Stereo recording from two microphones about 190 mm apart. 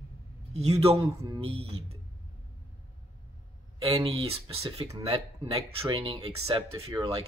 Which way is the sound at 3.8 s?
30° right (ahead or behind).